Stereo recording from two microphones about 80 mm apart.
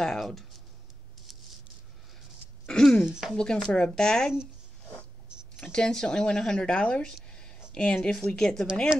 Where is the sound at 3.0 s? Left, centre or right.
Centre.